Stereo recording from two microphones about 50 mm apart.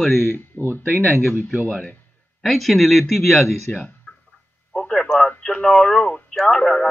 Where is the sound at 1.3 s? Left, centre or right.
Right.